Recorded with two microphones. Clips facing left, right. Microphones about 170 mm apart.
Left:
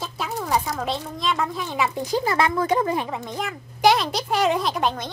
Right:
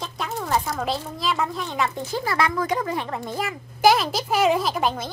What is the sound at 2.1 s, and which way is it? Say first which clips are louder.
Speech: left 3 dB; 20° left (ahead or behind).